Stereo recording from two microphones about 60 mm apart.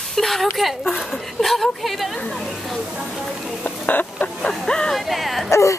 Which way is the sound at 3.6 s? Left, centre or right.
Left.